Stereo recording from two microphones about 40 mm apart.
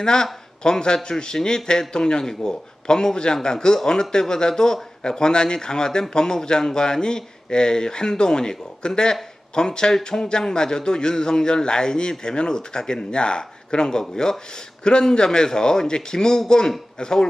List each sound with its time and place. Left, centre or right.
0.0 s a man's voice: centre